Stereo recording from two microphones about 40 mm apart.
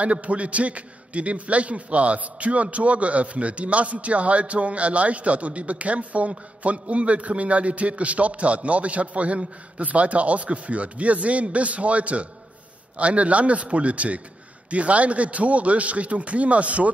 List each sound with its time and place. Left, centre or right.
0.0 s a man's voice: right